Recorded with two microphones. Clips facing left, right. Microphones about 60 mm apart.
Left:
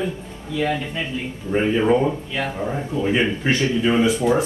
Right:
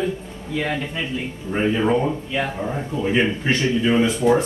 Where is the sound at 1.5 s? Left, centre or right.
Centre.